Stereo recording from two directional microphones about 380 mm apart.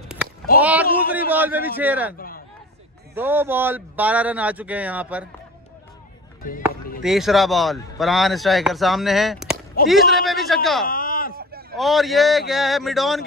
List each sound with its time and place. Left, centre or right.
0.6 s a man's voice: centre
2.1 s a sound: left
3.2 s a man's voice: centre
6.6 s a man's voice: centre
10.9 s a sound: left
11.7 s a man's voice: centre